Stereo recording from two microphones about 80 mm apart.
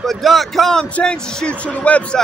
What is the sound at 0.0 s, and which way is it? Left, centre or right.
Speech, centre.